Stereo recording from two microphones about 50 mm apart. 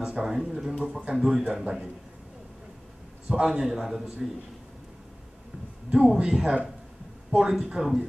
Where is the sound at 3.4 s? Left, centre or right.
Centre.